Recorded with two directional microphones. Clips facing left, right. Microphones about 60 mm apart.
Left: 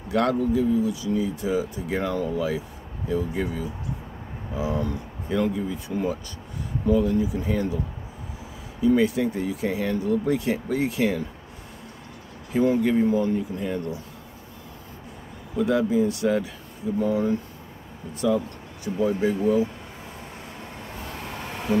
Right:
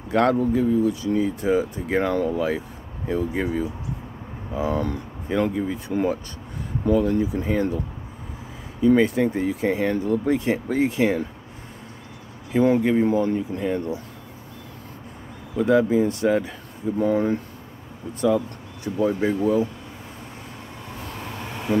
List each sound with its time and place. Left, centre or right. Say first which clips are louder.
0.1 s speech: right 3 dB; right
8.8 s speech: right 3 dB; right
12.5 s speech: right 2 dB; right
15.6 s speech: right 3 dB; right
19.0 s speech: right 1 dB; right